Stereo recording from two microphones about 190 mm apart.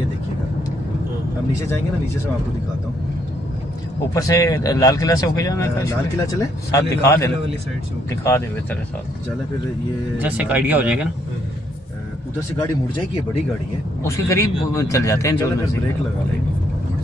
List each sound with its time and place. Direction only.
4.1 s speech: 15° left (ahead or behind)
10.1 s speech: 5° right (ahead or behind)
14.0 s speech: 15° left (ahead or behind)